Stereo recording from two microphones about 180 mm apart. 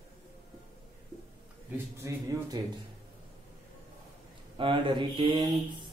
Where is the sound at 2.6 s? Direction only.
25° right (ahead or behind).